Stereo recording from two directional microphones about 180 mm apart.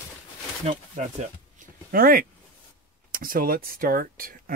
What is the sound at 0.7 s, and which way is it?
Speech, 40° right (ahead or behind).